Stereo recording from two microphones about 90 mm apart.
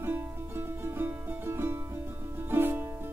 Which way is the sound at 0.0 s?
25° right (ahead or behind).